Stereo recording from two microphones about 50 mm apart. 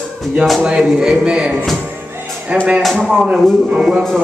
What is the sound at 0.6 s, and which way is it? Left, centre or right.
Speech, centre.